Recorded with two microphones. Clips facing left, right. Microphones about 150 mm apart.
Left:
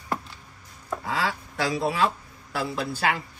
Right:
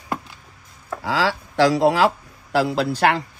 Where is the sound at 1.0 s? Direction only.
85° right.